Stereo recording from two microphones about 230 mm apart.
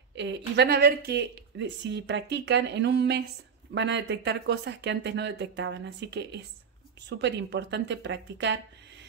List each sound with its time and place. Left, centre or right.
0.1 s speech: right